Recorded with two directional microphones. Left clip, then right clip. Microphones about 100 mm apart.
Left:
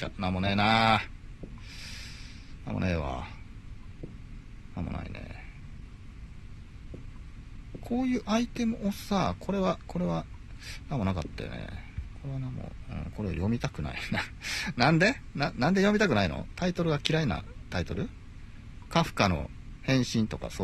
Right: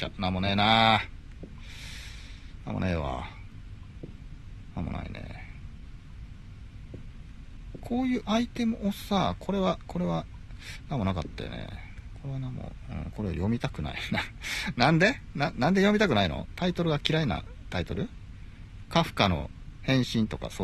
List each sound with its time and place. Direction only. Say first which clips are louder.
0.0 s speech: right 1 dB; 15° right (ahead or behind)
2.6 s speech: right 1 dB; 20° right (ahead or behind)
4.7 s speech: right 1 dB; 20° right (ahead or behind)
7.8 s speech: right 1 dB; 15° right (ahead or behind)